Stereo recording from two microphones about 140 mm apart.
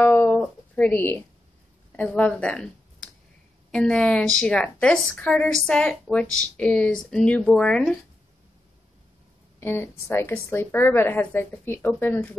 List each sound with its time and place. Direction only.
0.0 s a sound: 10° left (ahead or behind)
1.9 s a woman's voice: 10° left (ahead or behind)
9.6 s a woman's voice: 15° left (ahead or behind)